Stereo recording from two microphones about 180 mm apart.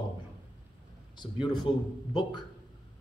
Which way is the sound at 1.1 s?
25° left (ahead or behind).